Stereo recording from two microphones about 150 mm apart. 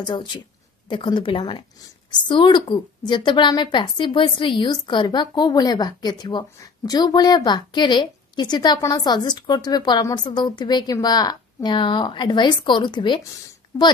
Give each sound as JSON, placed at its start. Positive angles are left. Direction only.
{"t": 0.0, "sound": "a woman's voice", "side_deg": 30}
{"t": 13.7, "sound": "a woman's voice", "side_deg": 20}